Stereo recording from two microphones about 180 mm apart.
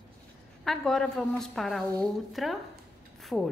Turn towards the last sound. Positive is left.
turn(degrees=5)  # may be behind; listen again after turning